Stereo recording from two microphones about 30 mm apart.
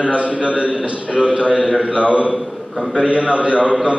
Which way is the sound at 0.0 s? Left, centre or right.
Right.